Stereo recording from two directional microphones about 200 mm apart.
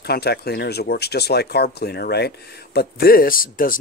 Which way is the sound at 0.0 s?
50° left (ahead or behind).